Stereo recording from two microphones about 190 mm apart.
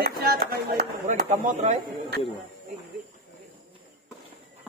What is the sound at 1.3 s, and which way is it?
Speech, 40° right (ahead or behind).